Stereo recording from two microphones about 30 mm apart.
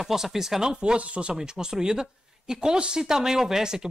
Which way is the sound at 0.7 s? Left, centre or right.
Right.